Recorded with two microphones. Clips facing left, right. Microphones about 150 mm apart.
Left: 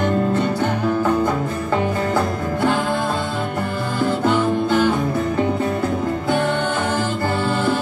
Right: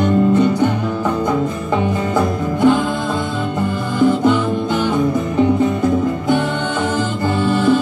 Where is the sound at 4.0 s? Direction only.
15° right (ahead or behind).